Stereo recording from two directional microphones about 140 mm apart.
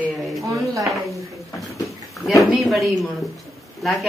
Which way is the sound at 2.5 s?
Centre (ahead or behind).